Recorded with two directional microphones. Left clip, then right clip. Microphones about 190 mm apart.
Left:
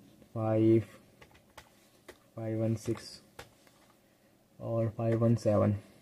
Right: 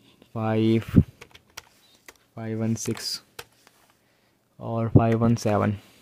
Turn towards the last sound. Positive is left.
turn(degrees=-55)  # may be behind; listen again after turning